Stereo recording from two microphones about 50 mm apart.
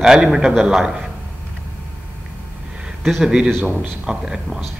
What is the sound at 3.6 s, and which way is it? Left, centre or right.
Speech, right.